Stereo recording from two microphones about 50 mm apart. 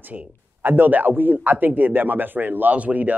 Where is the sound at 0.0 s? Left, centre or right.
Right.